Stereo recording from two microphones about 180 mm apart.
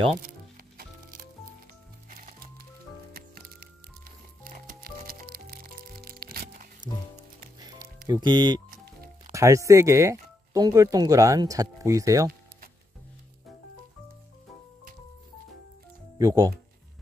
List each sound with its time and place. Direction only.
0.3 s music: 55° right (ahead or behind)
3.1 s music: 55° right (ahead or behind)
8.1 s speech: 25° right (ahead or behind)
16.2 s speech: 20° right (ahead or behind)